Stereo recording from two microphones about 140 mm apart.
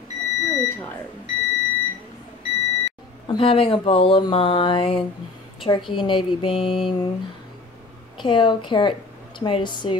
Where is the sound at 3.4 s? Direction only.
40° left (ahead or behind).